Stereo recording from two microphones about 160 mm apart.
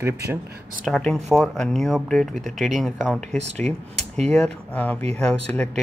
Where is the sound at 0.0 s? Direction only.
15° right (ahead or behind).